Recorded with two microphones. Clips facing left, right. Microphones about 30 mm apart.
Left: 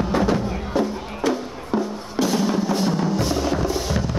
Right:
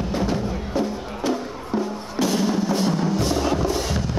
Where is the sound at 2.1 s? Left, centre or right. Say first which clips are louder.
Left 1 dB; centre.